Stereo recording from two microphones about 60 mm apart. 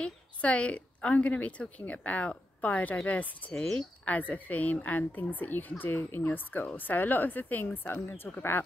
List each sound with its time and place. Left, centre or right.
0.0 s a woman's voice: centre; by 8.6 s left